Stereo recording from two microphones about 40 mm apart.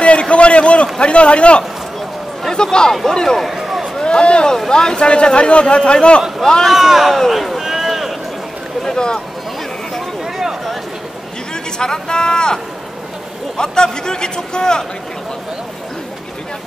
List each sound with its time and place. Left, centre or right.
0.0 s a sound: left
0.9 s a man's voice: left
3.4 s a sound: centre
4.0 s a man's voice: left
6.7 s speech: centre
7.1 s a sound: centre
8.8 s a man's voice: centre
11.8 s a man's voice: centre
13.6 s a man's voice: left